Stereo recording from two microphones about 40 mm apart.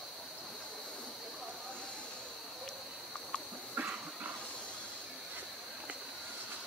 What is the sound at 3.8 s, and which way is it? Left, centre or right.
Train, right.